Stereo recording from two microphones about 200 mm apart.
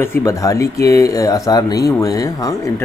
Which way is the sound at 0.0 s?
15° left (ahead or behind).